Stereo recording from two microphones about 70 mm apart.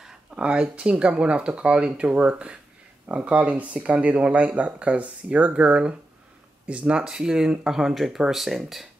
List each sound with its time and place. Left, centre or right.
0.0 s speech: centre